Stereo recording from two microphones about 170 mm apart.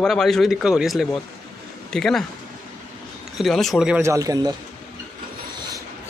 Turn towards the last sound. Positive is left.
turn(degrees=-20)  # may be behind; listen again after turning